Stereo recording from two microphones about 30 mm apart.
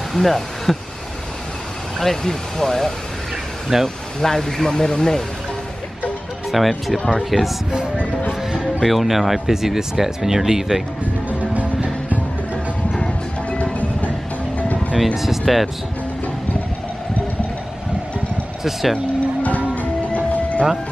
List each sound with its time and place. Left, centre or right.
0.1 s speech: centre
2.0 s speech: centre
3.7 s speech: centre
4.2 s speech: centre
4.6 s speech: left
6.5 s speech: centre
8.8 s speech: centre
11.2 s music: right
15.4 s speech: centre
18.6 s speech: centre
19.7 s music: left